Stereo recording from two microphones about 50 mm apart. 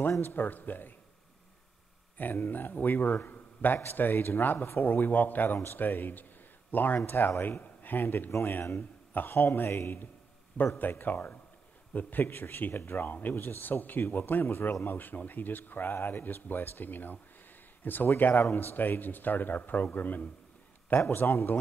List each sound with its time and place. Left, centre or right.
0.2 s a man's voice: left
2.1 s a man's voice: left
10.8 s a man's voice: left
13.0 s a man's voice: left
21.1 s speech: left